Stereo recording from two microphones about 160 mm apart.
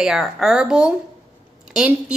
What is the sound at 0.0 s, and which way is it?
A woman's voice, 5° right (ahead or behind).